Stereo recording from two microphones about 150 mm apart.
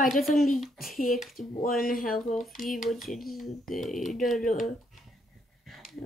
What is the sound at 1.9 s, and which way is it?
Speech, 70° left (ahead or behind).